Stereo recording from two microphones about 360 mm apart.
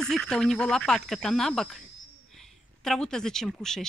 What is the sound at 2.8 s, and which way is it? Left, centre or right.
Speech, centre.